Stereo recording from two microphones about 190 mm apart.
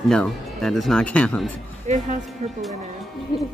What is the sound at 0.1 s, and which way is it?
Speech, 5° left (ahead or behind).